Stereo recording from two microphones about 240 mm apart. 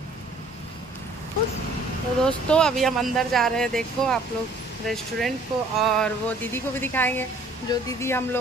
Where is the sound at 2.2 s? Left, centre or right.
Centre.